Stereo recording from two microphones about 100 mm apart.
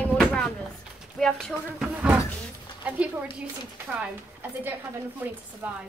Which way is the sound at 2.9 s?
15° right (ahead or behind).